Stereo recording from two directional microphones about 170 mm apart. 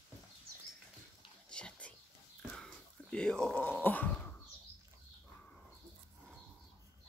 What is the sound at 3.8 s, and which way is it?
Dog, 10° left (ahead or behind).